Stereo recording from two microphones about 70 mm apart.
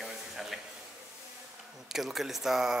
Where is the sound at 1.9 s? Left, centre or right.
Centre.